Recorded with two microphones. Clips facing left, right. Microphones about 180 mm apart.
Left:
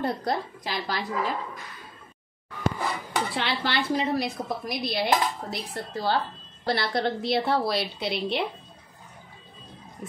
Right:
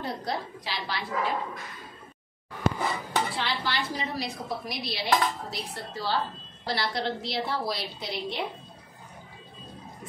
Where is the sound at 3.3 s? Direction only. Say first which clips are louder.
Left 3 dB; 65° left (ahead or behind).